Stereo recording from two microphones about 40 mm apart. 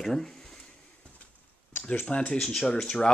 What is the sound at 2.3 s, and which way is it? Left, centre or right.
Speech, centre.